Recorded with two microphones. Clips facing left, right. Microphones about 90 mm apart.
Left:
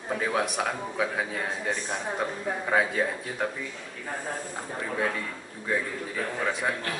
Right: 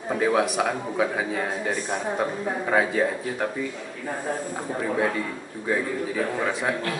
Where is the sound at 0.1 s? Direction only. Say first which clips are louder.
Right 5 dB; 5° right (ahead or behind).